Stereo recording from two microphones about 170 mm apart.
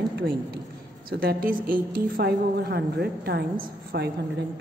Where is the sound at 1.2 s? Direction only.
55° right (ahead or behind).